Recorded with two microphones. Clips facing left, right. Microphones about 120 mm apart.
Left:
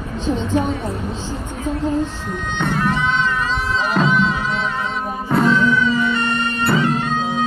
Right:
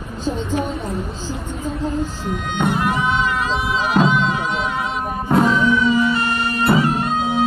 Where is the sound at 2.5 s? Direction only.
10° right (ahead or behind).